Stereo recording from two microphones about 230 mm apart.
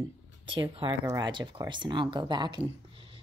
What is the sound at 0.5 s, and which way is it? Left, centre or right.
Speech, right.